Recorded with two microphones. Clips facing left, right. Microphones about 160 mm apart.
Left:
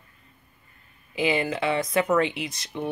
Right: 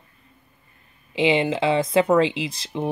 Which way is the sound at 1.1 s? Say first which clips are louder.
Right 5 dB; 25° right (ahead or behind).